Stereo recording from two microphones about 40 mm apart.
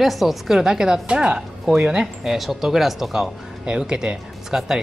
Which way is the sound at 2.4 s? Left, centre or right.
Centre.